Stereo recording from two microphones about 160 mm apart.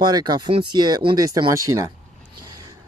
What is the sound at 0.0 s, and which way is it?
Speech, 25° right (ahead or behind).